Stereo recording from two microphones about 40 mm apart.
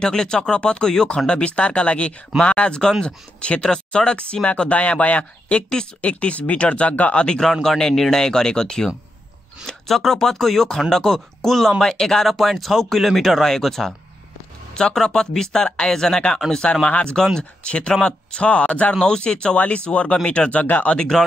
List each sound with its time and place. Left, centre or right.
0.0 s speech: centre
3.6 s speech: centre
7.2 s speech: centre
14.8 s speech: left
18.9 s speech: centre
19.5 s speech: left
20.6 s speech: left
21.1 s speech: centre